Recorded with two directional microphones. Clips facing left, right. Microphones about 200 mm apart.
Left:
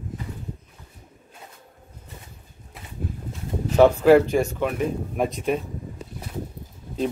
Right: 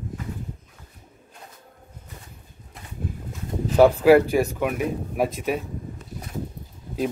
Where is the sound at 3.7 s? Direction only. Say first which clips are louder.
Even; 10° right (ahead or behind).